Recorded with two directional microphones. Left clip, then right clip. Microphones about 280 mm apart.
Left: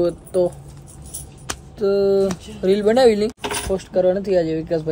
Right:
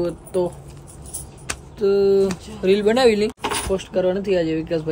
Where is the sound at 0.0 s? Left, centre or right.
Centre.